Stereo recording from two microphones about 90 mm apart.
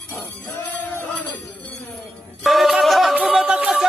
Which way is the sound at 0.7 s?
20° left (ahead or behind).